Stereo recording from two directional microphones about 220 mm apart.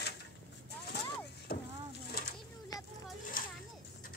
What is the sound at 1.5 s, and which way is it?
Vehicle, 40° left (ahead or behind).